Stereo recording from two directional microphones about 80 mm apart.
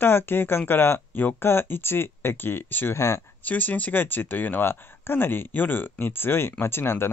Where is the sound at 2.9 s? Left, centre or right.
Left.